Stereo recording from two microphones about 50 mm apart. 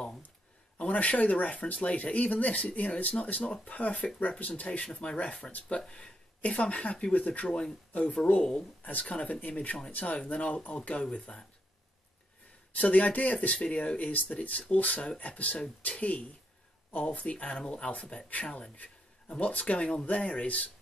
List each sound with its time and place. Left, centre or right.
0.7 s speech: left
5.8 s speech: centre
7.4 s speech: centre
7.9 s speech: left
12.7 s speech: left